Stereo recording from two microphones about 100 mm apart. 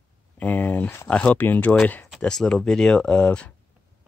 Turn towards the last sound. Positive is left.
turn(degrees=10)  # may be behind; listen again after turning